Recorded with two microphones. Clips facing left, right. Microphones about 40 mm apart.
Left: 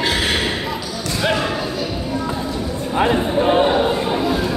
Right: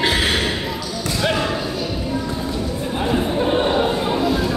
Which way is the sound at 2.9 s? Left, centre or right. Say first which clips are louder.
Left 4 dB; left.